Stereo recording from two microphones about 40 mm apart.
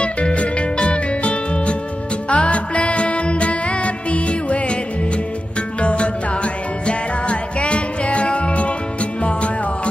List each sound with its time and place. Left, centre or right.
0.0 s music: left
5.8 s music: left